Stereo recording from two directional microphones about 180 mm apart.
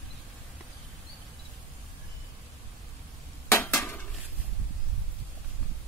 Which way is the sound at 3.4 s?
10° left (ahead or behind).